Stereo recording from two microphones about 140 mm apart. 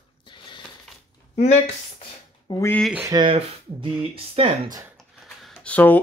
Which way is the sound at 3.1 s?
30° right (ahead or behind).